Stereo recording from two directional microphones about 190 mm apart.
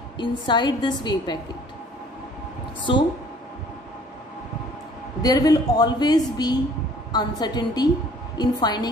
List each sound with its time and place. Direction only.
0.2 s a woman's voice: 25° left (ahead or behind)
2.8 s a woman's voice: 25° left (ahead or behind)
5.2 s a woman's voice: 20° left (ahead or behind)